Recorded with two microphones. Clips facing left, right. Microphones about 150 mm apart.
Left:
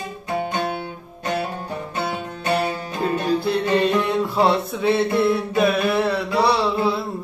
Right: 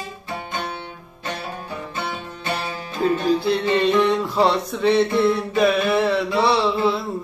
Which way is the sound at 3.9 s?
Centre (ahead or behind).